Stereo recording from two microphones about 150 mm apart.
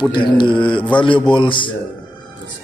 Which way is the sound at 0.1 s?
35° left (ahead or behind).